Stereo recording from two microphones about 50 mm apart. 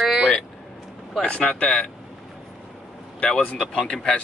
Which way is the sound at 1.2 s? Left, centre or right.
Left.